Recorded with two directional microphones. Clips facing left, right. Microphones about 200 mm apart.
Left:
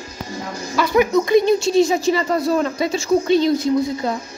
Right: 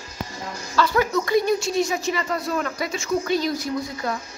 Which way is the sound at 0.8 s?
15° left (ahead or behind).